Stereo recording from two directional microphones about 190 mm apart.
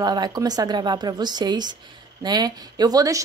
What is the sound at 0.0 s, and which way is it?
A woman's voice, 20° right (ahead or behind).